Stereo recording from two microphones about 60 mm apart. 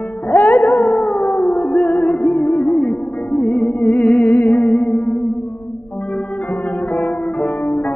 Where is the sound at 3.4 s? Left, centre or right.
Centre.